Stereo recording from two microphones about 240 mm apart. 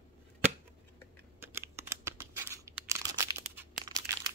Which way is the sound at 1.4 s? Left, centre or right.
Centre.